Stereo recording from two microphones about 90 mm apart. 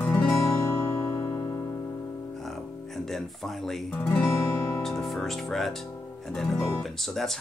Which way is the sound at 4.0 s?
20° left (ahead or behind).